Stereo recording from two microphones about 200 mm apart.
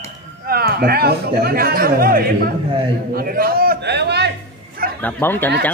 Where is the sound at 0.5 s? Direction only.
50° right (ahead or behind).